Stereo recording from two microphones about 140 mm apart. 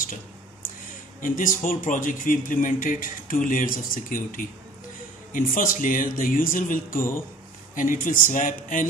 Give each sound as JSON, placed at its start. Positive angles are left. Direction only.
{"t": 1.2, "sound": "speech", "side_deg": 70}